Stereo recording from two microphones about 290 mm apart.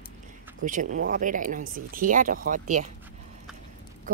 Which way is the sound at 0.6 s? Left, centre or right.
Right.